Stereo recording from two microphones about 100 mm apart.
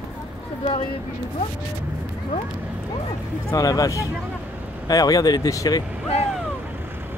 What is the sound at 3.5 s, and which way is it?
Speech, 35° left (ahead or behind).